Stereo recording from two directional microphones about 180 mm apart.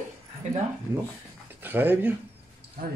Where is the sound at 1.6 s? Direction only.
10° right (ahead or behind).